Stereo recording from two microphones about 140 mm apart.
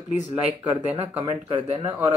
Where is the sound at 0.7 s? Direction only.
40° right (ahead or behind).